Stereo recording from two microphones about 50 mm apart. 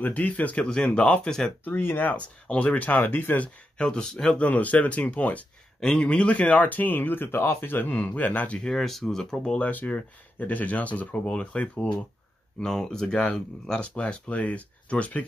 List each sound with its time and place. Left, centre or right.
0.0 s speech: left
0.7 s speech: centre
1.6 s speech: left
2.4 s speech: left
3.7 s speech: centre
4.4 s speech: left
5.8 s speech: centre; by 8.5 s left
8.5 s speech: centre
9.6 s speech: left
12.5 s speech: centre; by 15.2 s left